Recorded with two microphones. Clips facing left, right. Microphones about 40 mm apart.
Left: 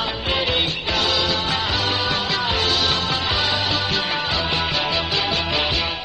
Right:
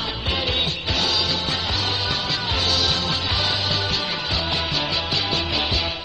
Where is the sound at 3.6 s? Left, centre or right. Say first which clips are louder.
Left 2 dB; left.